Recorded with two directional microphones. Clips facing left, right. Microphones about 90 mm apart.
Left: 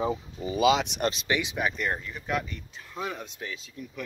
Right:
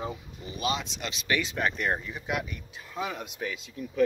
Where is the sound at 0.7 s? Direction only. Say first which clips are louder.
Left 7 dB; 70° left (ahead or behind).